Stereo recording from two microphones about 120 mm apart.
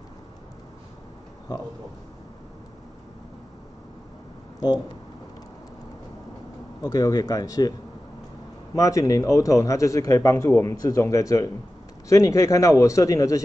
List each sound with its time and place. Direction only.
1.5 s speech: 35° left (ahead or behind)
4.6 s speech: 35° left (ahead or behind)
6.8 s speech: 30° left (ahead or behind)
8.7 s speech: 25° left (ahead or behind)